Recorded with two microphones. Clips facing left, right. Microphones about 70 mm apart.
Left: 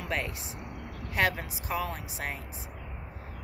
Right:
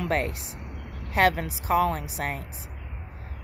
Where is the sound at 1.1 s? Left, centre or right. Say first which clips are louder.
Right 6 dB; right.